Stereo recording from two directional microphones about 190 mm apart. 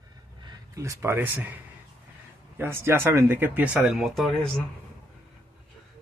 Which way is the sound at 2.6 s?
15° right (ahead or behind).